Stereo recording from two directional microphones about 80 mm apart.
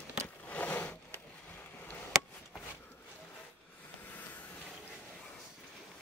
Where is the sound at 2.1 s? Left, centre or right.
Centre.